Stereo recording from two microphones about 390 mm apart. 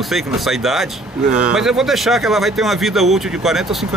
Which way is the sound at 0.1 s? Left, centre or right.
Centre.